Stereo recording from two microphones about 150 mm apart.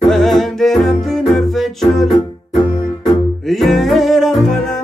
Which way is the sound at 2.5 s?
30° left (ahead or behind).